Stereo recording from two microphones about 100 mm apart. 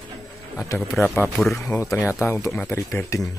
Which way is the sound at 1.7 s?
25° left (ahead or behind).